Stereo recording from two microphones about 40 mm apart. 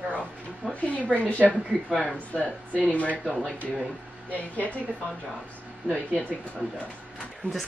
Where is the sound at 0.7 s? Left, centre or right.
Left.